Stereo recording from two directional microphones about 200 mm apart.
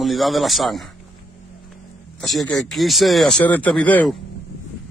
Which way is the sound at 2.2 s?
Centre (ahead or behind).